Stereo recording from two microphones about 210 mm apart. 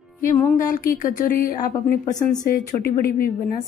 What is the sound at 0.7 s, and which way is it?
A woman's voice, 40° left (ahead or behind).